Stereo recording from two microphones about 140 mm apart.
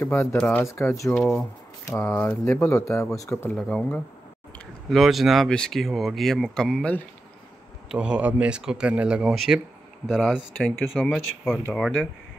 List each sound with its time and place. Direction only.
0.0 s speech: 20° left (ahead or behind)
0.4 s speech: 10° left (ahead or behind)
0.7 s speech: 20° left (ahead or behind)
3.4 s speech: 5° left (ahead or behind)
7.9 s speech: 5° right (ahead or behind)